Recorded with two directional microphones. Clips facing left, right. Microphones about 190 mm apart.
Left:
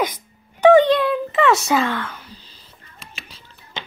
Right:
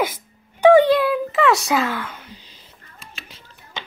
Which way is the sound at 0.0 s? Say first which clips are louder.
Even; 10° right (ahead or behind).